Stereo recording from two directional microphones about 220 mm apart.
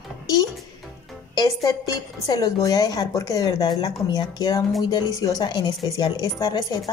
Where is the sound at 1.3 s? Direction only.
20° left (ahead or behind).